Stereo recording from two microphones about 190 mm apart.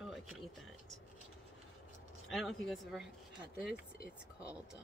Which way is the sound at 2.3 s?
Centre (ahead or behind).